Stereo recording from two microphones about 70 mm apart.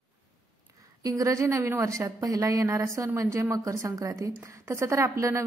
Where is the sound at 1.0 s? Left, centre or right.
Right.